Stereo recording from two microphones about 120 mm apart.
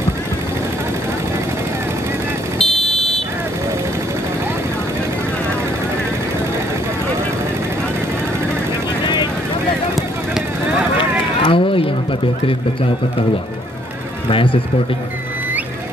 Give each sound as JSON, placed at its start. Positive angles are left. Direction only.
{"t": 2.6, "sound": "vehicle", "side_deg": 5}
{"t": 11.4, "sound": "a sound", "side_deg": 50}
{"t": 14.3, "sound": "speech", "side_deg": 45}